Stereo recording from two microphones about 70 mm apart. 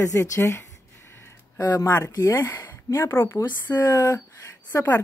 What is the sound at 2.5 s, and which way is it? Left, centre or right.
Speech, left.